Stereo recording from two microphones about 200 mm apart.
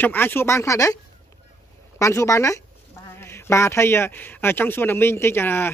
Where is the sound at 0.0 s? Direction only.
10° left (ahead or behind).